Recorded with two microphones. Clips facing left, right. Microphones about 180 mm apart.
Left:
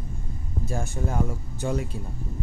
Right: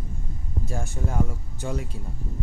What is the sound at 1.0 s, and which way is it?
Speech, 50° left (ahead or behind).